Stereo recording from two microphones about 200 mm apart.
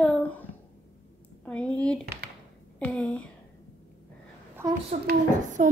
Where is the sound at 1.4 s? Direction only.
5° left (ahead or behind).